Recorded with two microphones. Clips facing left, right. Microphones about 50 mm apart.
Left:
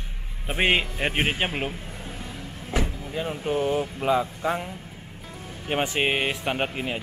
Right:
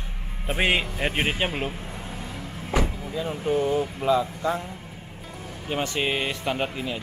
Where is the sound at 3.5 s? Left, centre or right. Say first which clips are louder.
Right 1 dB; centre.